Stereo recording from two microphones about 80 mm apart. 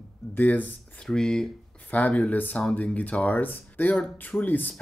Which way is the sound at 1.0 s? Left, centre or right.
Centre.